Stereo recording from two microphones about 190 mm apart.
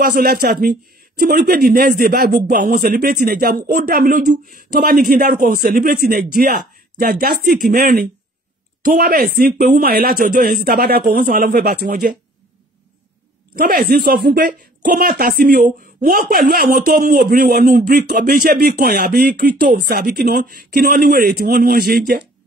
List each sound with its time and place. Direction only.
0.0 s a man's voice: 50° right (ahead or behind)
13.6 s a man's voice: 50° right (ahead or behind)